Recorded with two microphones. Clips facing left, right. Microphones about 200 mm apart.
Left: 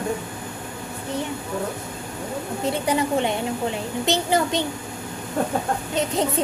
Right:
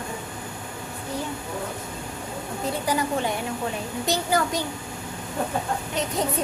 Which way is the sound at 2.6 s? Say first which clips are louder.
Left 3 dB; 25° left (ahead or behind).